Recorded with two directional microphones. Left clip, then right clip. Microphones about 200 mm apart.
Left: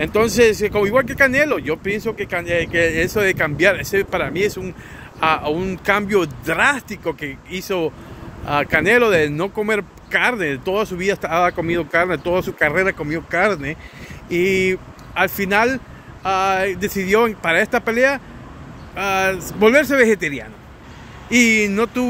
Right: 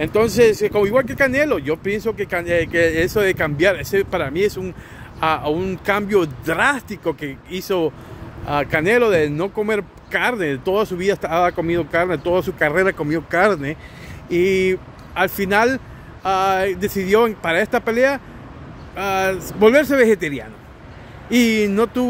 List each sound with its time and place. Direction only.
0.0 s speech: 10° right (ahead or behind)
8.5 s speech: 10° right (ahead or behind)